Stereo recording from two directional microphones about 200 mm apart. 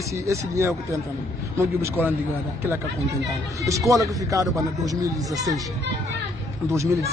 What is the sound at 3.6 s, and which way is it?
Speech, 15° right (ahead or behind).